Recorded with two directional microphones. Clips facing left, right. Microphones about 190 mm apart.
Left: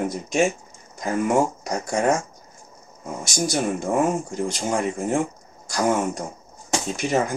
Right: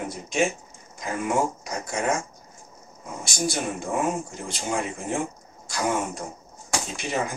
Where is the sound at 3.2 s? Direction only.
45° left (ahead or behind).